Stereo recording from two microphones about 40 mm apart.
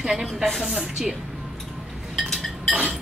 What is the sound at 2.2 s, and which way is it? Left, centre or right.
Chink, centre.